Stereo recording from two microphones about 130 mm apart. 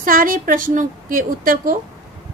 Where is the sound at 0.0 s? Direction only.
90° right.